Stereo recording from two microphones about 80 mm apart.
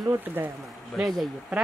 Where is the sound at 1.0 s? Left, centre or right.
Centre.